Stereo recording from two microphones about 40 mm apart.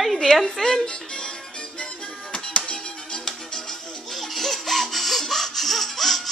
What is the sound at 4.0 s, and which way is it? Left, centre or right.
Music, centre.